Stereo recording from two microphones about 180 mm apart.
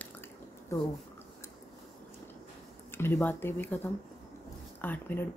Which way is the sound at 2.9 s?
10° left (ahead or behind).